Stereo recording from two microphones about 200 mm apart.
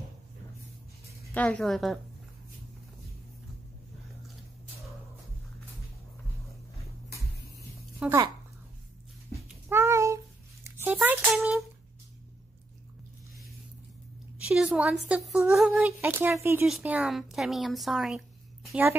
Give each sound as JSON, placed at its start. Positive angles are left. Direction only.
{"t": 1.3, "sound": "speech", "side_deg": 5}
{"t": 8.0, "sound": "speech", "side_deg": -10}
{"t": 9.7, "sound": "a sound", "side_deg": -15}
{"t": 14.5, "sound": "speech", "side_deg": -5}